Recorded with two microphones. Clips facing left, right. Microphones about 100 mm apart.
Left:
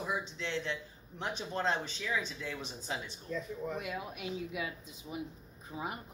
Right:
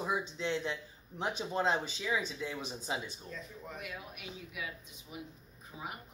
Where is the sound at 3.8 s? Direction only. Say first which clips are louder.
Left 5 dB; 25° left (ahead or behind).